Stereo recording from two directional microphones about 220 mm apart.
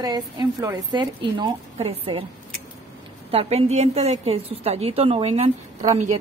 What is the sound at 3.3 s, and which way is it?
Speech, 30° right (ahead or behind).